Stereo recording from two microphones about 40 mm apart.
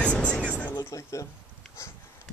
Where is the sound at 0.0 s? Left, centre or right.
Left.